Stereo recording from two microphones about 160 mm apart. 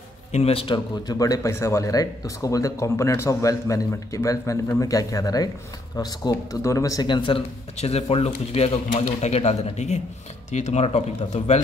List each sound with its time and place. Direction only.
0.3 s a man's voice: 40° left (ahead or behind)
1.0 s speech: 20° left (ahead or behind); by 11.6 s 45° left (ahead or behind)